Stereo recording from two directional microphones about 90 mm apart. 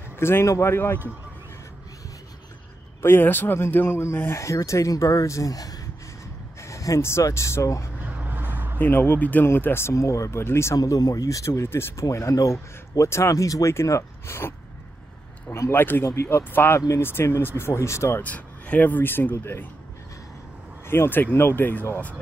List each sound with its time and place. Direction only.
0.2 s speech: 30° left (ahead or behind)
3.0 s speech: 25° left (ahead or behind)
8.2 s a sound: 20° right (ahead or behind)
8.7 s speech: 25° left (ahead or behind)
10.8 s speech: 40° left (ahead or behind)
15.5 s speech: 25° left (ahead or behind)
18.2 s speech: 15° left (ahead or behind)
20.8 s speech: 25° left (ahead or behind)